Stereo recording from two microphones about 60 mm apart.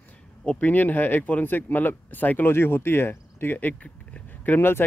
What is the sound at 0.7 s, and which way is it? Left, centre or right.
Speech, left.